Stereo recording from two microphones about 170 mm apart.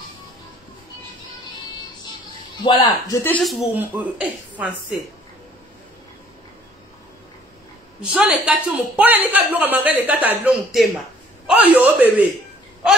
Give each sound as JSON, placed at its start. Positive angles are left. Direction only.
{"t": 2.6, "sound": "speech", "side_deg": 25}
{"t": 3.3, "sound": "speech", "side_deg": 5}
{"t": 3.7, "sound": "a woman's voice", "side_deg": -10}
{"t": 8.0, "sound": "a woman's voice", "side_deg": -10}